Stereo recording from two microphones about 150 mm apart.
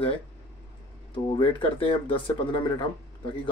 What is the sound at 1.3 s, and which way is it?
Speech, 40° left (ahead or behind).